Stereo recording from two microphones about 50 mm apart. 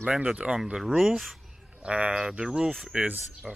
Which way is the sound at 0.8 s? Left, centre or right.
Centre.